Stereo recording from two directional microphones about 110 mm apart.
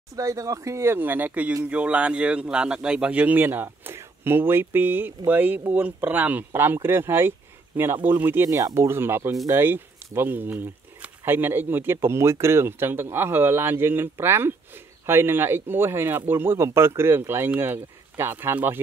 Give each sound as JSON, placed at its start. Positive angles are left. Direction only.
{"t": 0.1, "sound": "a man's voice", "side_deg": -30}